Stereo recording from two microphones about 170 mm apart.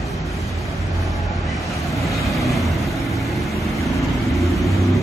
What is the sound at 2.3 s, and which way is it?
Vehicle, centre (ahead or behind).